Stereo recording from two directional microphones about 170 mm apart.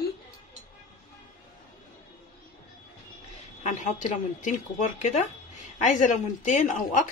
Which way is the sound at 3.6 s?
40° left (ahead or behind).